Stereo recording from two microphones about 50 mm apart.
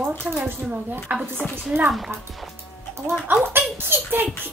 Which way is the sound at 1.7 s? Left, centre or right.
Right.